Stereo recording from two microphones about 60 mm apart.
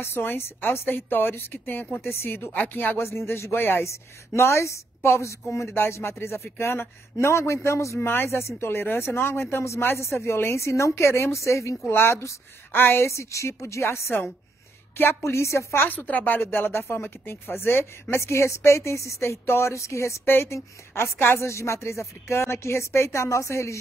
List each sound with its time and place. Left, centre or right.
0.0 s a woman's voice: left
2.5 s a woman's voice: left
3.8 s speech: left
8.1 s a woman's voice: left
11.9 s a woman's voice: left
13.1 s a woman's voice: left
15.0 s a woman's voice: left
15.3 s a woman's voice: left